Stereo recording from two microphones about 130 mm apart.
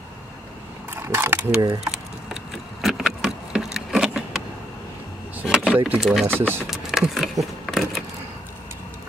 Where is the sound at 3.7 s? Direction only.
5° right (ahead or behind).